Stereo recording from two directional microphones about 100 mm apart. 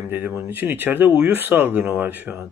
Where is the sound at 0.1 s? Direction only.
25° right (ahead or behind).